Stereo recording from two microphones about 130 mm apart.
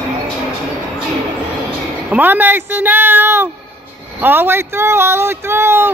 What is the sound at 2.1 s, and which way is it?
Speech, 15° right (ahead or behind).